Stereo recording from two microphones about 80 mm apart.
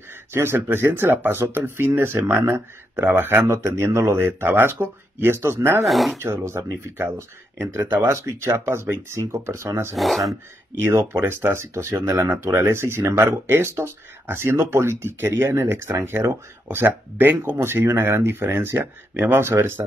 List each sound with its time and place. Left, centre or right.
0.3 s speech: right
5.9 s speech: centre
6.1 s speech: right
9.9 s speech: centre
10.9 s speech: right